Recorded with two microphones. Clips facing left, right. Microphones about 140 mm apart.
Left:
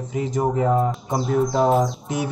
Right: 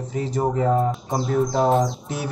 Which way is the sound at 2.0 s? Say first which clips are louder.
Left 3 dB; 20° left (ahead or behind).